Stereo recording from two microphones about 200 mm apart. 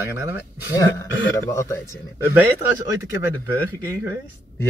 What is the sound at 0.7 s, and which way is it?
A man's voice, 15° left (ahead or behind).